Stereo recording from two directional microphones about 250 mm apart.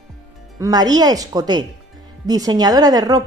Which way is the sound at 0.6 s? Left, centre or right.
Centre.